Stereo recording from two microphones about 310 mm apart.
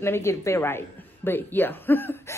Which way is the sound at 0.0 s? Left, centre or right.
Centre.